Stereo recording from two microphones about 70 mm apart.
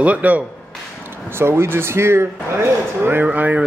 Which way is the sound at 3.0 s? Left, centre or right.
Right.